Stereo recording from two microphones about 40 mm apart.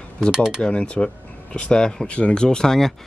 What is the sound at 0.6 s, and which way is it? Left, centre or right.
Speech, left.